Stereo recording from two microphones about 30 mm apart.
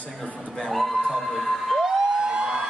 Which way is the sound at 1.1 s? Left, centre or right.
Centre.